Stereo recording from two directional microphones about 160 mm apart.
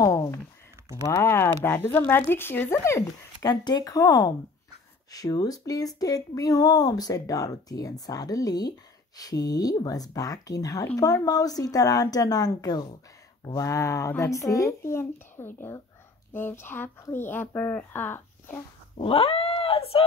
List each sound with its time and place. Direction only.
0.0 s a sound: 20° left (ahead or behind)
1.0 s speech: 15° left (ahead or behind)
3.4 s speech: 25° left (ahead or behind)
18.9 s cat: 35° left (ahead or behind)